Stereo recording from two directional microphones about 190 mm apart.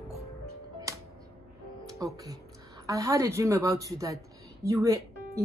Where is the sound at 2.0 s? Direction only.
20° right (ahead or behind).